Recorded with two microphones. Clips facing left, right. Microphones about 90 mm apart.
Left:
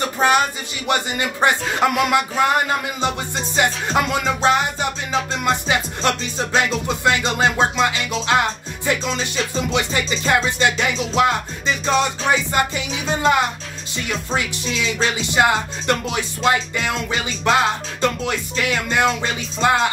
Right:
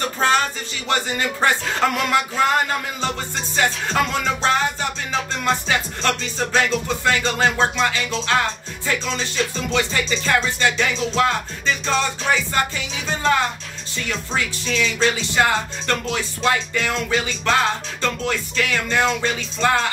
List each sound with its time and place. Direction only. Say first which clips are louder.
0.2 s music: left 2 dB; 15° left (ahead or behind)
3.5 s music: left 1 dB; 15° left (ahead or behind)